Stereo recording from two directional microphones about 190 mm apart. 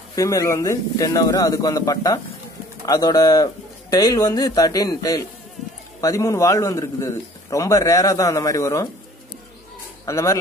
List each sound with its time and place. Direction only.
0.1 s a man's voice: 15° left (ahead or behind)
10.0 s speech: 15° left (ahead or behind)